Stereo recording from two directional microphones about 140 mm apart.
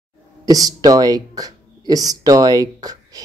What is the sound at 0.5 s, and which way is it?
Speech, 25° right (ahead or behind).